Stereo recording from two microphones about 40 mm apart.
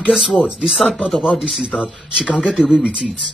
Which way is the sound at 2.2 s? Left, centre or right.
Left.